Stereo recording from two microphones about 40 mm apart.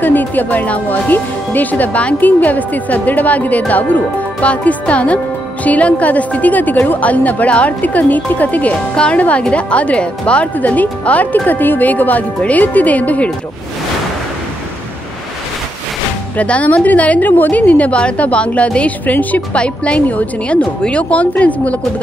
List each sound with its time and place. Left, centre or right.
0.0 s speech: left
10.5 s speech: left
16.3 s speech: left
17.2 s speech: left
18.9 s speech: left
19.5 s speech: left